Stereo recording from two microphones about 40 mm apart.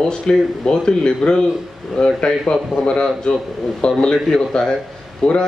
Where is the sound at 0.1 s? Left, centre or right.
Centre.